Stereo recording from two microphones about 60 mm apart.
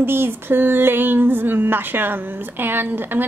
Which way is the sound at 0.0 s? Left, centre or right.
Right.